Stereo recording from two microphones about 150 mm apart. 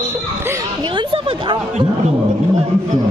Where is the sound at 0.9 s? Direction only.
35° right (ahead or behind).